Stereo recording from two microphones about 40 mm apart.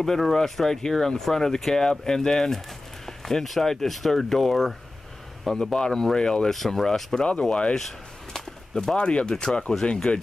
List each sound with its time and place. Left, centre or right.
0.0 s speech: centre
5.5 s speech: centre
6.5 s speech: centre
8.7 s speech: centre